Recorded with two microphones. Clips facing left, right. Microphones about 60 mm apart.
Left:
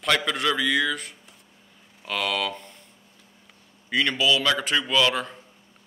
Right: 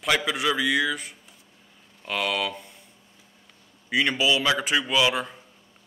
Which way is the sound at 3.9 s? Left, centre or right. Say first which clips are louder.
Even; centre.